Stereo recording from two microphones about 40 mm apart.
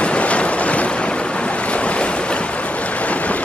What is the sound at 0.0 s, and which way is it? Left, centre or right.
Waves, left.